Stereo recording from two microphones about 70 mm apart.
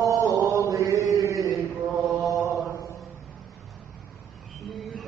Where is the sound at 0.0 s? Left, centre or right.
Right.